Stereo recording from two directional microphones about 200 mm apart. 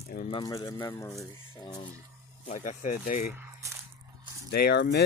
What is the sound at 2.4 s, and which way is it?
Speech, 40° left (ahead or behind).